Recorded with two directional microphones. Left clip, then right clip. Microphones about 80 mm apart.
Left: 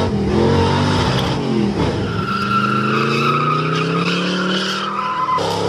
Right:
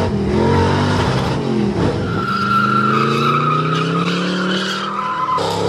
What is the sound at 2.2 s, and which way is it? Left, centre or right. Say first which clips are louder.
Vehicle: right 2 dB; centre.